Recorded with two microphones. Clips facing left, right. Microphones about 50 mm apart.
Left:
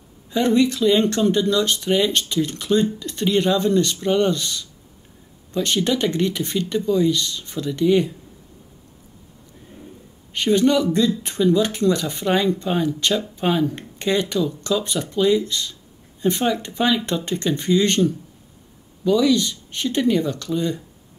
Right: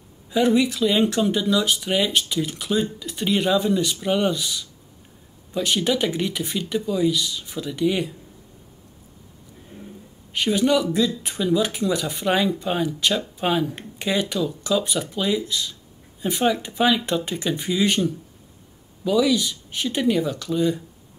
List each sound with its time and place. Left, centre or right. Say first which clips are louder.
0.3 s speech: left 1 dB; centre
10.3 s speech: left 2 dB; centre